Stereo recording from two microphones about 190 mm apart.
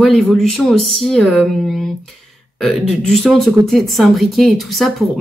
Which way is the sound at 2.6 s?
Centre (ahead or behind).